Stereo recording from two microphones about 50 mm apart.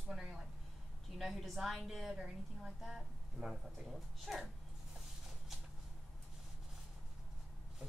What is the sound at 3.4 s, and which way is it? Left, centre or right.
A woman's voice, centre.